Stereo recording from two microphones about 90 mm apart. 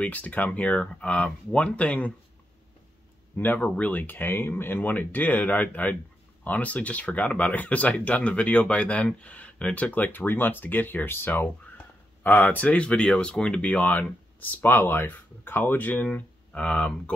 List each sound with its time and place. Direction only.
0.0 s speech: 15° left (ahead or behind)
3.3 s speech: 20° left (ahead or behind)